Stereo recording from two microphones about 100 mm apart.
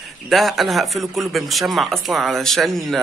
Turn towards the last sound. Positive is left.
turn(degrees=0)  # may be behind; listen again after turning